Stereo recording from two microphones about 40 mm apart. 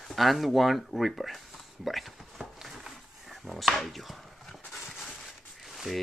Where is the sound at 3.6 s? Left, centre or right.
Centre.